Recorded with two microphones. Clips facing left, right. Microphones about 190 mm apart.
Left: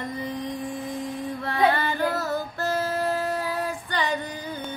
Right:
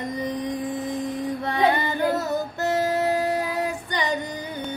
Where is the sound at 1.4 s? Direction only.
20° right (ahead or behind).